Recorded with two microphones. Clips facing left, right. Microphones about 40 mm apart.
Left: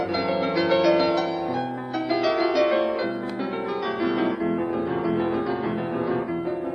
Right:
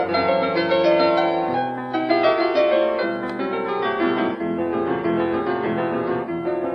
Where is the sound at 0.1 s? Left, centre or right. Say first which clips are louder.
Right 5 dB; right.